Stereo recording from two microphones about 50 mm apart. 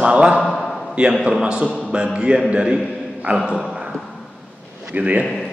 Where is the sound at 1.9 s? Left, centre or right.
Centre.